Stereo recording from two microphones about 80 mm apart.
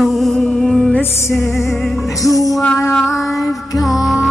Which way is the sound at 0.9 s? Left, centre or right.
Left.